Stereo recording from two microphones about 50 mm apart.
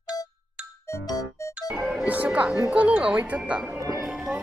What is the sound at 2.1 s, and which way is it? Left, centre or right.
Music, right.